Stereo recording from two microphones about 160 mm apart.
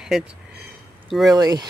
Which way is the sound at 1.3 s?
25° right (ahead or behind).